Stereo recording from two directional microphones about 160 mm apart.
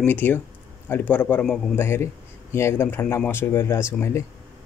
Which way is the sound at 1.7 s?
15° left (ahead or behind).